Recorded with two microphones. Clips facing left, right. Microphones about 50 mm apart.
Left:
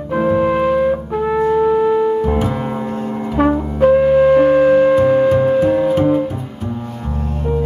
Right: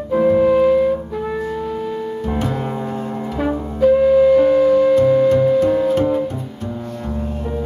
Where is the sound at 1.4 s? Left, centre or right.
Left.